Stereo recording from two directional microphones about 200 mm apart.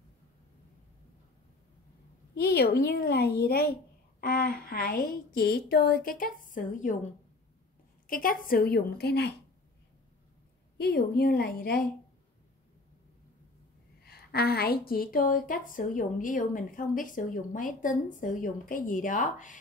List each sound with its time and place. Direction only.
2.3 s a woman's voice: 50° left (ahead or behind)
8.1 s a woman's voice: 45° left (ahead or behind)
10.8 s a woman's voice: 50° left (ahead or behind)
14.0 s a woman's voice: 50° left (ahead or behind)